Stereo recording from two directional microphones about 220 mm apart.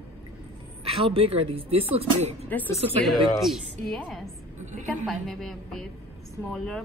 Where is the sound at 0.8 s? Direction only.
25° right (ahead or behind).